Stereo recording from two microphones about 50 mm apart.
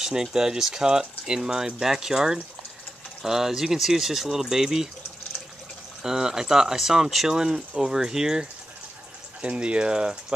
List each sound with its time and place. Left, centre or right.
0.0 s speech: centre
6.0 s speech: centre
9.4 s speech: right